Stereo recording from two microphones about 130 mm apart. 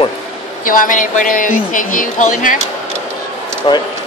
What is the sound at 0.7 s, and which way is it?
Speech, 90° left.